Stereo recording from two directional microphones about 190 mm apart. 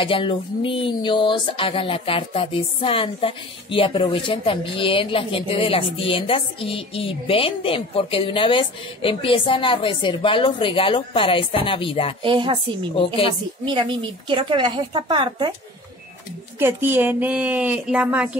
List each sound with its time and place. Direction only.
0.0 s speech: 25° left (ahead or behind)
12.2 s speech: 25° right (ahead or behind)
13.0 s speech: 30° left (ahead or behind)
13.7 s speech: 25° right (ahead or behind)
16.5 s speech: 10° right (ahead or behind)